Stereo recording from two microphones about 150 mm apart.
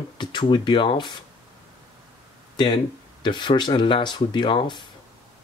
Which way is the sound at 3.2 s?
30° left (ahead or behind).